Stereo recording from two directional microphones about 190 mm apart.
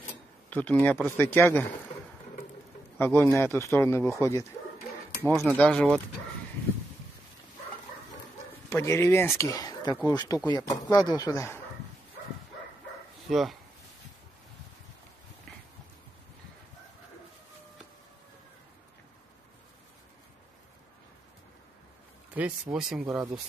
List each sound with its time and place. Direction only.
0.0 s a sound: 10° left (ahead or behind)
1.1 s speech: 10° left (ahead or behind)
3.0 s speech: 10° left (ahead or behind)
5.3 s speech: centre (ahead or behind)
8.6 s speech: 15° left (ahead or behind)
13.3 s speech: centre (ahead or behind)
22.3 s speech: 5° right (ahead or behind)
23.0 s speech: 15° right (ahead or behind)